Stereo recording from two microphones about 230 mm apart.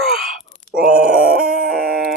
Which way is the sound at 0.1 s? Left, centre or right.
Centre.